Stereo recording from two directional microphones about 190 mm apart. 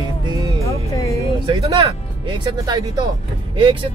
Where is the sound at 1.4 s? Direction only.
25° right (ahead or behind).